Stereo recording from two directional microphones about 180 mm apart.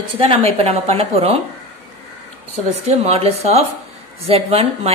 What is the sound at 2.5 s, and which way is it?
A woman's voice, 35° right (ahead or behind).